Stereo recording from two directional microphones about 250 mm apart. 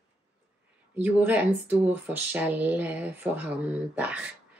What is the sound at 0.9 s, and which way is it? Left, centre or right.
Speech, centre.